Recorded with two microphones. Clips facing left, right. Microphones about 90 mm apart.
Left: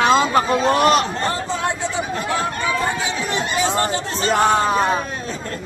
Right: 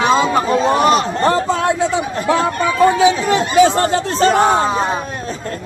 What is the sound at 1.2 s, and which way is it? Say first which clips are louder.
Chatter: right 7 dB; 60° right (ahead or behind).